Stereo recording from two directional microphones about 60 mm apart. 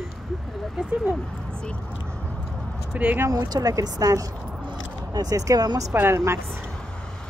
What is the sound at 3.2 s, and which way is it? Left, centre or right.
Speech, right.